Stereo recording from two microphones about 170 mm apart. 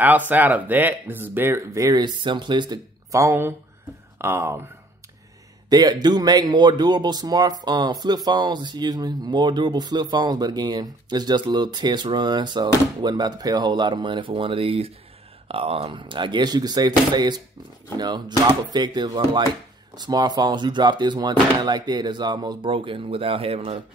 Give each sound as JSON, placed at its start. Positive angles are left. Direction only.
{"t": 0.0, "sound": "speech", "side_deg": -10}
{"t": 5.7, "sound": "speech", "side_deg": -25}